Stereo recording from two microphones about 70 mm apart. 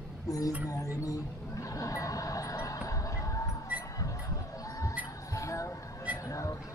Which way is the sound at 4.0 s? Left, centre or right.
Left.